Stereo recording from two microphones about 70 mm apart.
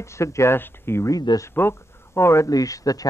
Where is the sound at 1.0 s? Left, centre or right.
Left.